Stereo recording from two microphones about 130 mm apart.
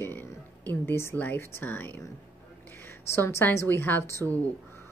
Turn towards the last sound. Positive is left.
turn(degrees=20)  # may be behind; listen again after turning